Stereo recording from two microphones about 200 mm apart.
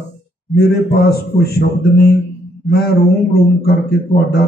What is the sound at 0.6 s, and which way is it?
Speech, 50° left (ahead or behind).